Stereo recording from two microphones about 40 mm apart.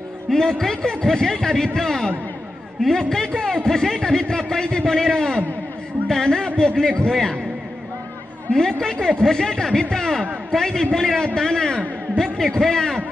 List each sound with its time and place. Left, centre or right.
0.3 s a man's voice: centre
8.5 s a man's voice: centre